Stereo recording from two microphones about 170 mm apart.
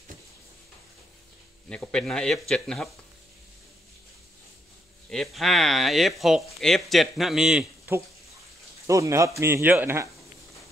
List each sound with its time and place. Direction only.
1.7 s speech: 5° left (ahead or behind)
5.1 s speech: centre (ahead or behind)
8.8 s speech: 15° right (ahead or behind)